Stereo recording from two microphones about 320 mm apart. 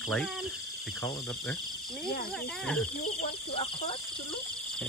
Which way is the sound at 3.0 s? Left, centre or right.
Centre.